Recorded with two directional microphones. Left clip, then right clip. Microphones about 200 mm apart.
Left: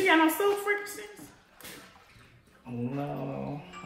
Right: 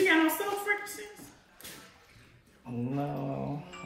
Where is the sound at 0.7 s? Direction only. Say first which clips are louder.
Left 1 dB; 35° left (ahead or behind).